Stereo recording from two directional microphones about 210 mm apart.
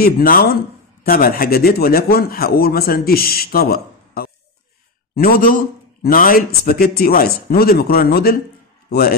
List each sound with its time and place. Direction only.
0.0 s a man's voice: 45° left (ahead or behind)